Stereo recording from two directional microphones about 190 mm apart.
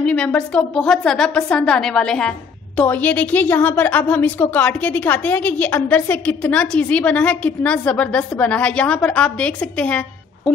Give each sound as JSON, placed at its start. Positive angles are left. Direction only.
{"t": 0.0, "sound": "a woman's voice", "side_deg": 5}